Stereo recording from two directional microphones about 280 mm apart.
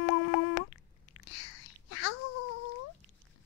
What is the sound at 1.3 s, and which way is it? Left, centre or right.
Whispering, left.